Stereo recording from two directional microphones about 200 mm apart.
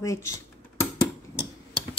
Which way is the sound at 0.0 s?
15° left (ahead or behind).